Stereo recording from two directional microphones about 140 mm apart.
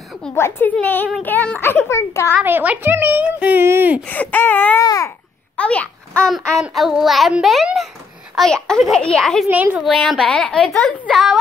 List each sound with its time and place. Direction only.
0.3 s a child's voice: 15° left (ahead or behind)
2.4 s speech: 10° right (ahead or behind)
4.0 s a child's voice: 10° left (ahead or behind)
4.8 s babbling: 25° left (ahead or behind)
5.6 s a child's voice: 10° left (ahead or behind)
9.5 s speech: 10° right (ahead or behind)
9.8 s a child's voice: centre (ahead or behind)